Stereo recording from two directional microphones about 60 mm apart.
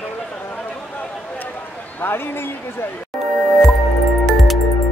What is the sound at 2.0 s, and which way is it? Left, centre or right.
Speech, left.